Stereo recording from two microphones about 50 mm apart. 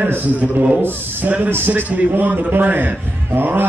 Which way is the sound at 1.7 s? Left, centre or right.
Right.